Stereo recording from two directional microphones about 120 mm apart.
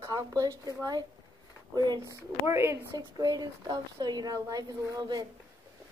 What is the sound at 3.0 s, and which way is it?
A woman's voice, 35° right (ahead or behind).